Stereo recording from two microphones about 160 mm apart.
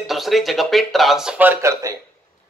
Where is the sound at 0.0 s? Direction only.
Centre (ahead or behind).